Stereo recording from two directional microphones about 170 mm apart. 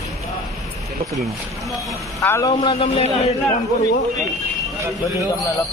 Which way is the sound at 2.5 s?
35° left (ahead or behind).